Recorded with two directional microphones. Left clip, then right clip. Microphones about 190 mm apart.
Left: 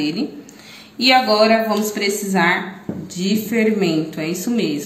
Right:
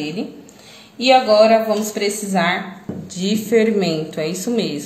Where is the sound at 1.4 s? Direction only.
25° right (ahead or behind).